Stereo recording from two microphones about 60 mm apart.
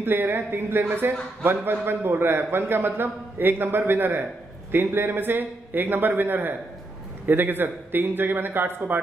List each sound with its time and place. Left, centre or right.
0.0 s a man's voice: right